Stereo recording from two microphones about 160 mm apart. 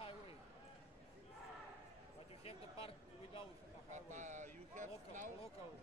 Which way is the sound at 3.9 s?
50° right (ahead or behind).